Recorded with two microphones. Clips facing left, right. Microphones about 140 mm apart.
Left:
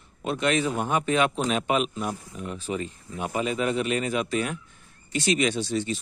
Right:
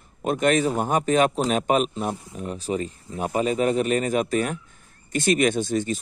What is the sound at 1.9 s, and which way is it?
Speech, 25° right (ahead or behind).